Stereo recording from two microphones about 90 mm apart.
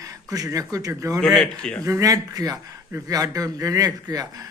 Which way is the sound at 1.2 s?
Centre (ahead or behind).